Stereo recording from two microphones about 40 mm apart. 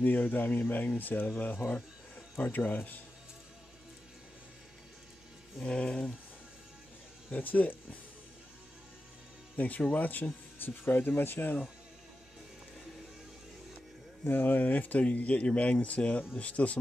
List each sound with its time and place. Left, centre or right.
0.0 s speech: left
5.7 s speech: left
7.2 s speech: left
9.6 s speech: left
10.6 s speech: left
14.2 s speech: left
15.0 s speech: left